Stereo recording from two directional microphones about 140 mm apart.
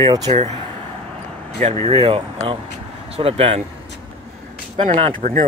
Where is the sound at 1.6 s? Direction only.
55° right (ahead or behind).